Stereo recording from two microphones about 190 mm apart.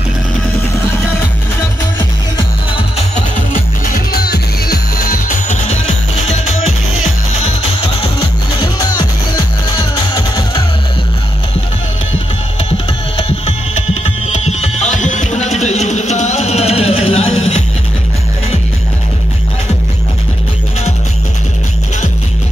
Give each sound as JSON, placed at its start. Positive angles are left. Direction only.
{"t": 3.9, "sound": "music", "side_deg": 55}
{"t": 9.8, "sound": "music", "side_deg": 25}
{"t": 14.0, "sound": "music", "side_deg": 35}